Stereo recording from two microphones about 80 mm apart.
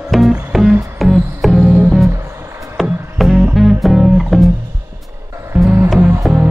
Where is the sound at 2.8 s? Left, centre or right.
Centre.